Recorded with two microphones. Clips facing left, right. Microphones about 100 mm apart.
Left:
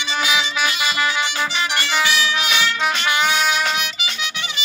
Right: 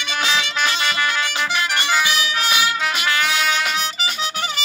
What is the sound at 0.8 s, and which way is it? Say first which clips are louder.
Music: left 1 dB; 15° left (ahead or behind).